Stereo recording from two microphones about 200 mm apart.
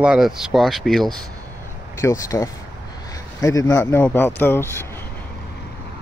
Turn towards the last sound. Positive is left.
turn(degrees=10)  # may be behind; listen again after turning